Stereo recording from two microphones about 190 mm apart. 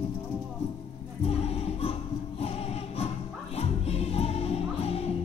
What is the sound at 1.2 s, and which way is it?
Music, 35° left (ahead or behind).